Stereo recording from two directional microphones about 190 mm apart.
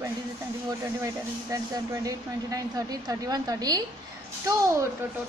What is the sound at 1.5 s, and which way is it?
A woman's voice, 20° right (ahead or behind).